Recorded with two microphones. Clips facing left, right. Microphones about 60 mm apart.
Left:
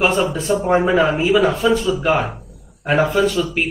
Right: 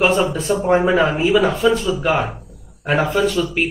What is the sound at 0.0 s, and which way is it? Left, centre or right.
A man's voice, centre.